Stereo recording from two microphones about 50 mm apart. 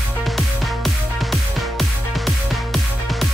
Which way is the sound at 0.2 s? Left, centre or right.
Centre.